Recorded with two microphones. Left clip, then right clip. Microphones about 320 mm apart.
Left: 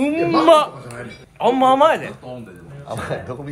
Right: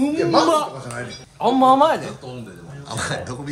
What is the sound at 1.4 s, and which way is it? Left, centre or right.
Speech, centre.